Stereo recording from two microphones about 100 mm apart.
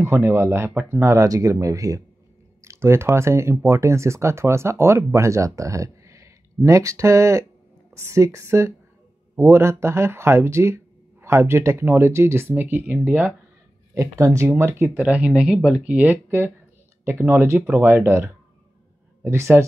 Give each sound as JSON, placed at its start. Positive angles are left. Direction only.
{"t": 0.0, "sound": "speech", "side_deg": -25}
{"t": 13.9, "sound": "speech", "side_deg": -30}
{"t": 15.0, "sound": "speech", "side_deg": -15}